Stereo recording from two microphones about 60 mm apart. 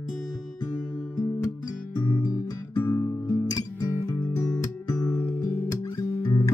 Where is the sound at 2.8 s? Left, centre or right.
Left.